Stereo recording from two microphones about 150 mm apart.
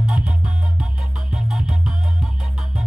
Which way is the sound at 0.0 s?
10° right (ahead or behind).